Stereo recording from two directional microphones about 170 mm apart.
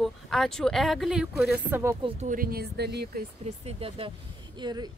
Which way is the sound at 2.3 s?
60° right (ahead or behind).